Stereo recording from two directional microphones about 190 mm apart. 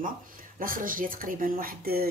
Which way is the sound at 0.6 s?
45° right (ahead or behind).